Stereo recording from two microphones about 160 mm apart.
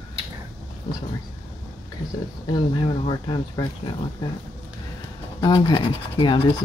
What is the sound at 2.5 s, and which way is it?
Speech, 30° left (ahead or behind).